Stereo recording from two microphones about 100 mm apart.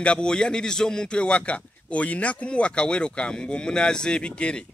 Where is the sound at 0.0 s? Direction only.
10° left (ahead or behind).